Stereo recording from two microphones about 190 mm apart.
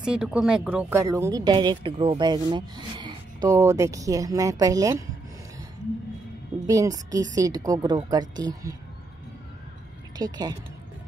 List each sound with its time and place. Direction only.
0.0 s speech: 5° right (ahead or behind)
6.6 s speech: 20° right (ahead or behind)
10.1 s speech: 20° right (ahead or behind)